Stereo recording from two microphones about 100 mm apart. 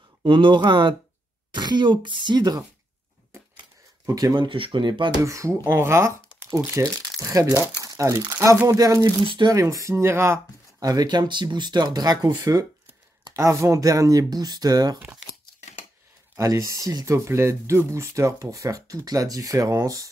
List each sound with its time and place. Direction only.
0.2 s speech: 55° right (ahead or behind)
4.0 s speech: 35° right (ahead or behind)
4.4 s speech: 60° right (ahead or behind)
5.2 s speech: 30° right (ahead or behind)
7.9 s crumpling: 30° right (ahead or behind)
8.3 s speech: 30° right (ahead or behind)
9.2 s speech: 60° right (ahead or behind)
9.5 s speech: 35° right (ahead or behind)
10.8 s speech: 40° right (ahead or behind)
13.4 s speech: 30° right (ahead or behind)
16.3 s speech: 35° right (ahead or behind)